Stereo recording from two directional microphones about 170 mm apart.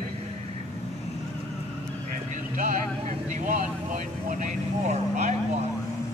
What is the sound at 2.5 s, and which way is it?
Vehicle, 50° right (ahead or behind).